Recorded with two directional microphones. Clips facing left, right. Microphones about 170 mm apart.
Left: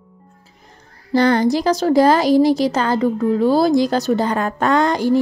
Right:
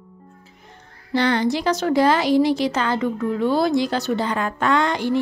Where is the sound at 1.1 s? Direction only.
40° left (ahead or behind).